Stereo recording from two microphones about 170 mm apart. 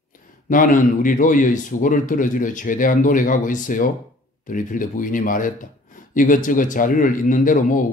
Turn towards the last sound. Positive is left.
turn(degrees=50)  # may be behind; listen again after turning